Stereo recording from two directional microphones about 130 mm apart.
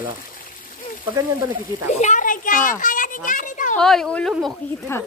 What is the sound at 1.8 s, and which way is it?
A child's voice, 70° left (ahead or behind).